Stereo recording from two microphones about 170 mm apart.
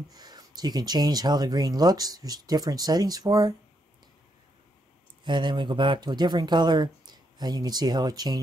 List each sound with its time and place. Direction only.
0.1 s speech: 25° right (ahead or behind)
5.2 s speech: 25° right (ahead or behind)